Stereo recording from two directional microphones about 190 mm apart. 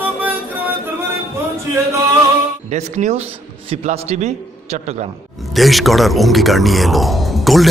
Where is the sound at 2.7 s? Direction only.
35° right (ahead or behind).